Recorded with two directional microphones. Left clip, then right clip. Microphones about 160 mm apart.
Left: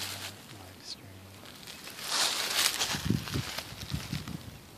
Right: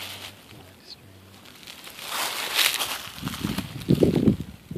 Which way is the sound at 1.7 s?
45° right (ahead or behind).